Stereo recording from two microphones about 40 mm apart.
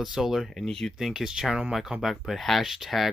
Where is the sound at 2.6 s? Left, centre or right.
Centre.